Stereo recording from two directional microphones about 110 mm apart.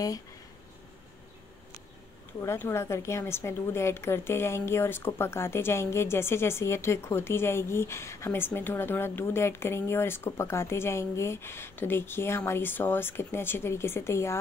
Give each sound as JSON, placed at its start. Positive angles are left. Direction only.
{"t": 2.4, "sound": "a woman's voice", "side_deg": 25}